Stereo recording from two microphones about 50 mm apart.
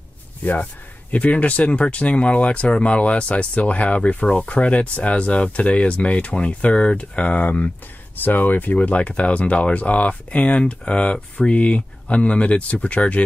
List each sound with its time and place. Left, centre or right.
0.4 s speech: left
8.7 s speech: left